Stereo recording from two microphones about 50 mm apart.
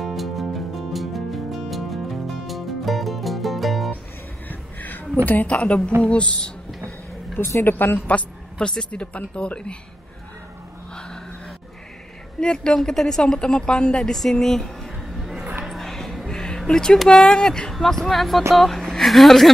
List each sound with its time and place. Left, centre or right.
0.0 s music: centre
4.5 s a sound: left
5.2 s speech: left
7.3 s a woman's voice: left
7.7 s a woman's voice: left
8.5 s speech: centre
12.4 s a woman's voice: centre
15.1 s a sound: centre
15.6 s music: centre
16.3 s a woman's voice: centre